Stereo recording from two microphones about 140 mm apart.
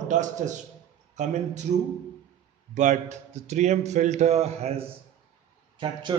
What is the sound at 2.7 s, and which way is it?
A man's voice, 60° right (ahead or behind).